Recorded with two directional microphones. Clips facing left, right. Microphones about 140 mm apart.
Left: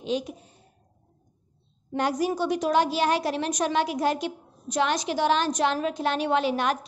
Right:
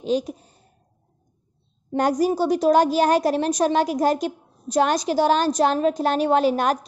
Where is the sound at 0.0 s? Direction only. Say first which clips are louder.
Right 5 dB; 40° right (ahead or behind).